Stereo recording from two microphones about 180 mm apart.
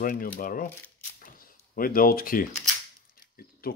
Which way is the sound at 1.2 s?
50° left (ahead or behind).